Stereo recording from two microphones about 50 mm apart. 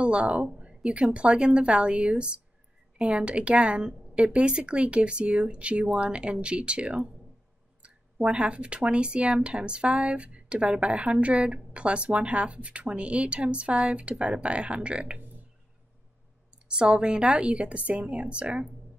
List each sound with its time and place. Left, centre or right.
0.0 s a woman's voice: right
16.6 s speech: centre